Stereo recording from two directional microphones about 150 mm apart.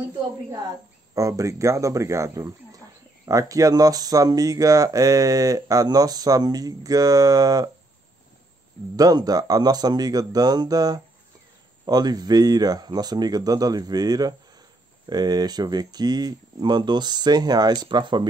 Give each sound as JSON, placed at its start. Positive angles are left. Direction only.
{"t": 1.1, "sound": "speech", "side_deg": -20}
{"t": 8.9, "sound": "speech", "side_deg": -25}